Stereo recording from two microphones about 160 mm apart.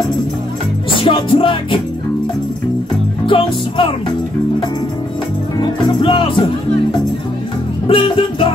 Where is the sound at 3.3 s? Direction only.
30° left (ahead or behind).